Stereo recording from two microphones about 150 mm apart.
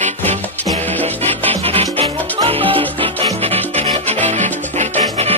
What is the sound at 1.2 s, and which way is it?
Music, 45° right (ahead or behind).